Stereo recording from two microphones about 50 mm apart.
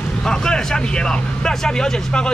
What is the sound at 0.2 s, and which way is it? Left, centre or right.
Speech, centre.